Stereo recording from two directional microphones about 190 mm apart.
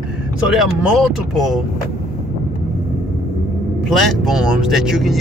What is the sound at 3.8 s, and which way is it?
Speech, centre (ahead or behind).